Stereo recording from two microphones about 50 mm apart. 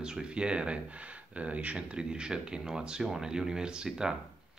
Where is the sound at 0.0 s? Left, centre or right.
Centre.